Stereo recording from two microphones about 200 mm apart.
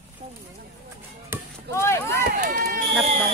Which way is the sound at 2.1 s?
45° right (ahead or behind).